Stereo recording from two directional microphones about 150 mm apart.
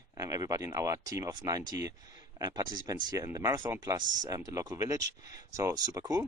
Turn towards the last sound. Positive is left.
turn(degrees=-25)  # may be behind; listen again after turning